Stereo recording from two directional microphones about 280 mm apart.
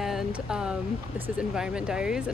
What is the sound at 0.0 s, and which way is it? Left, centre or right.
Speech, centre.